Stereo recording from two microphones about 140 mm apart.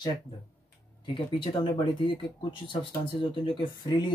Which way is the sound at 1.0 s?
35° left (ahead or behind).